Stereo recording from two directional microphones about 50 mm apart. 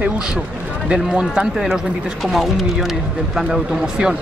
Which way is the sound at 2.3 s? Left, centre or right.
Centre.